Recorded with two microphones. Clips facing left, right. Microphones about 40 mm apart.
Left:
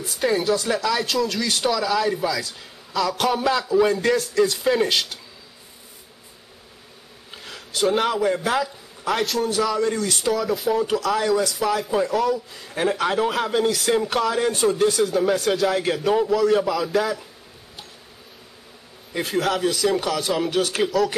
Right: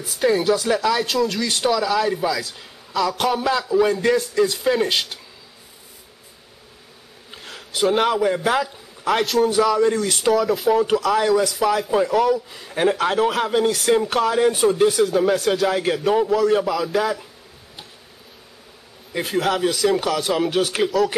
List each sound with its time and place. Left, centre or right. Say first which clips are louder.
0.0 s a man's voice: right 3 dB; centre
4.8 s a man's voice: even; centre
7.2 s speech: right 1 dB; centre
9.8 s a man's voice: right 4 dB; centre
10.3 s a man's voice: right 5 dB; centre
19.1 s a man's voice: right 1 dB; centre